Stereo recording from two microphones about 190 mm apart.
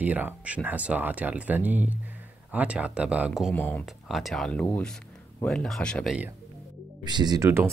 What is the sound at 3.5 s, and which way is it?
Speech, 10° left (ahead or behind).